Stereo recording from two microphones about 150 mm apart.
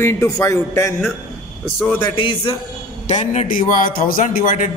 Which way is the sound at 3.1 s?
50° left (ahead or behind).